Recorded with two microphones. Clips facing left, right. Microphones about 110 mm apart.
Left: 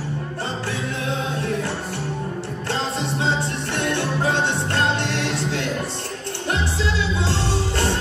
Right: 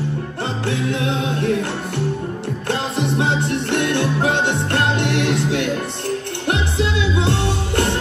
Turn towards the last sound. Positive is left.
turn(degrees=-60)  # may be behind; listen again after turning